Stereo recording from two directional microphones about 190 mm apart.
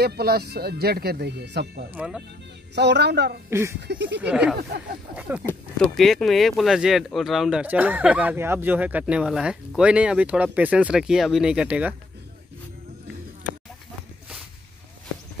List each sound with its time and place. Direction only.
0.0 s speech: 55° right (ahead or behind)
2.0 s speech: 5° right (ahead or behind)
2.7 s speech: 60° right (ahead or behind)
3.4 s speech: 15° right (ahead or behind)
3.8 s speech: 65° right (ahead or behind)
4.2 s speech: 5° right (ahead or behind)
5.5 s speech: 5° left (ahead or behind)